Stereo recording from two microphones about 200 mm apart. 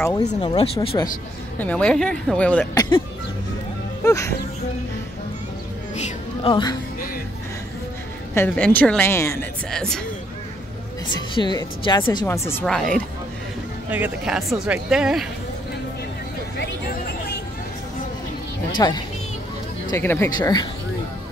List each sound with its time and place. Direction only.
0.3 s speech: 25° left (ahead or behind)
1.6 s speech: 5° left (ahead or behind)
4.0 s speech: 15° left (ahead or behind)
5.9 s music: 35° left (ahead or behind)
6.5 s speech: 20° left (ahead or behind)
8.4 s speech: 10° left (ahead or behind)
11.1 s speech: 20° left (ahead or behind); by 13.0 s 5° left (ahead or behind)
13.8 s speech: 10° right (ahead or behind)
18.8 s speech: 20° left (ahead or behind)